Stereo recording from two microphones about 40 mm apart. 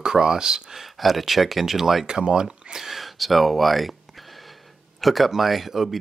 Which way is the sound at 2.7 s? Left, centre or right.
Centre.